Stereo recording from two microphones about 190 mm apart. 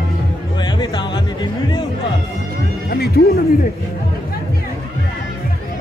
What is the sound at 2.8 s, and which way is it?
Music, 55° left (ahead or behind).